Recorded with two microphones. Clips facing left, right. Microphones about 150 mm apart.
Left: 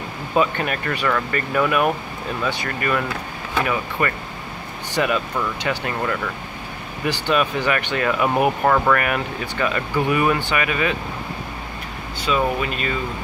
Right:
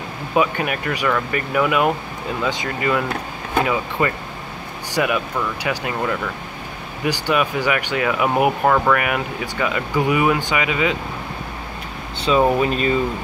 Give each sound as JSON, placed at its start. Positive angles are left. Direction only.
{"t": 0.3, "sound": "speech", "side_deg": -10}
{"t": 12.3, "sound": "speech", "side_deg": -30}